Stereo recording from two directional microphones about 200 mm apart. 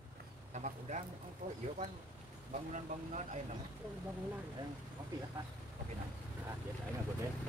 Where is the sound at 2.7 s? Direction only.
35° right (ahead or behind).